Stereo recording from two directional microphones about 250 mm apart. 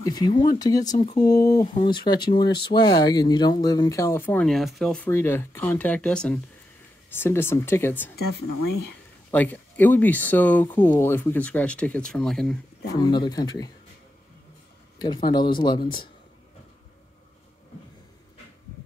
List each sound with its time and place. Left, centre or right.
0.0 s speech: centre
9.3 s speech: centre
13.0 s speech: centre
15.0 s speech: centre